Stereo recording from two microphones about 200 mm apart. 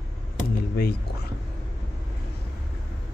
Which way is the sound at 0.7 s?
50° left (ahead or behind).